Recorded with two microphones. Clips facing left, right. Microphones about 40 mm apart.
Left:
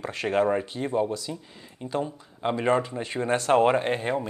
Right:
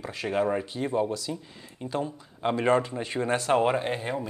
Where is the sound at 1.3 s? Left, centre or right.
Centre.